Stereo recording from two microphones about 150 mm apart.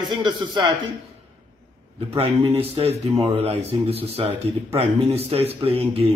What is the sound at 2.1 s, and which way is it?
A man's voice, 40° right (ahead or behind).